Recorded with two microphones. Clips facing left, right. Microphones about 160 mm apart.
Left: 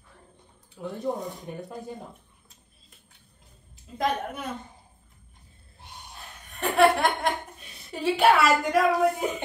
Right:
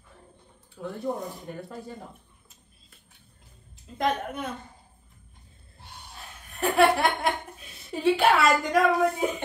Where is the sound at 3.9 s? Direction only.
Centre (ahead or behind).